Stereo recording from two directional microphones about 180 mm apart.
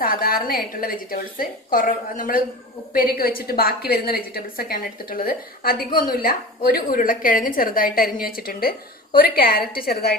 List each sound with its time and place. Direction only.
0.0 s a woman's voice: 55° left (ahead or behind)